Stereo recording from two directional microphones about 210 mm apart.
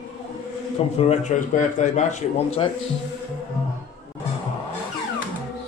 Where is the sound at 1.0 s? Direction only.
35° left (ahead or behind).